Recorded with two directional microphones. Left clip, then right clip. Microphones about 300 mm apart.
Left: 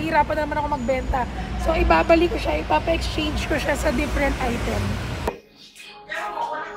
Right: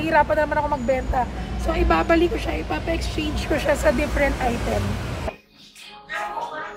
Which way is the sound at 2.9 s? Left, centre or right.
Centre.